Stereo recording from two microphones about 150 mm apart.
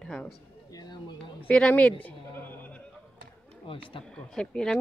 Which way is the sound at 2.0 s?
10° left (ahead or behind).